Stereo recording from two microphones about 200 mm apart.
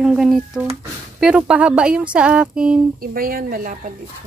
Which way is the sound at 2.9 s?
45° right (ahead or behind).